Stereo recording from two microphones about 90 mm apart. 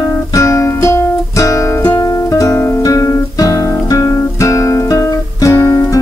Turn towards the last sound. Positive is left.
turn(degrees=25)  # may be behind; listen again after turning